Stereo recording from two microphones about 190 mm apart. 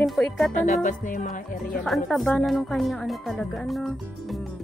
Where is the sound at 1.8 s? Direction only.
Centre (ahead or behind).